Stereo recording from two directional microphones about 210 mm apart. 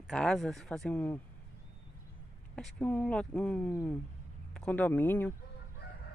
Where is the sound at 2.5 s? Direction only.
Centre (ahead or behind).